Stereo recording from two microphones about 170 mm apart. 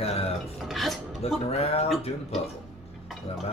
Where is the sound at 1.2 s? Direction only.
35° left (ahead or behind).